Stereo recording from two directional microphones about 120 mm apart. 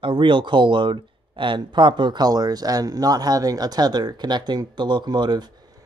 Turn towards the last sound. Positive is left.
turn(degrees=-35)  # may be behind; listen again after turning